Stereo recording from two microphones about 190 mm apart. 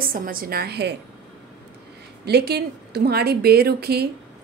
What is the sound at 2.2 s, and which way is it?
A woman's voice, 60° right (ahead or behind).